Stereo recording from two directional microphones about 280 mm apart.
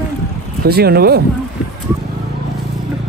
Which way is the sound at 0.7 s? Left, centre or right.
Right.